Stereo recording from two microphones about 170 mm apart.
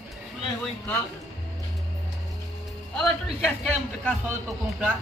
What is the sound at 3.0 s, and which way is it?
Music, centre (ahead or behind).